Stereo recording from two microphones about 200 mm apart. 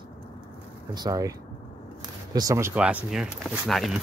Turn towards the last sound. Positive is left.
turn(degrees=0)  # may be behind; listen again after turning